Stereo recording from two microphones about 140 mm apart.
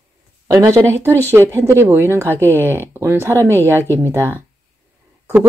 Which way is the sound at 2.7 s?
15° right (ahead or behind).